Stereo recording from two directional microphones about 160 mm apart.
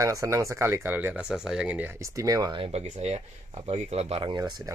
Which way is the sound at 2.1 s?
20° right (ahead or behind).